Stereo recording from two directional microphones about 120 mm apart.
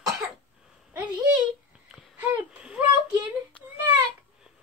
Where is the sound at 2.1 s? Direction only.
15° right (ahead or behind).